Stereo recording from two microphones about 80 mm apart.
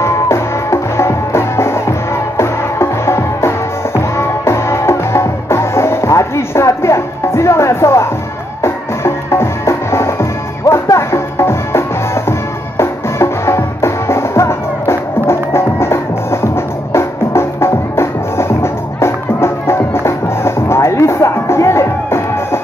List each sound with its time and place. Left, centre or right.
0.0 s music: left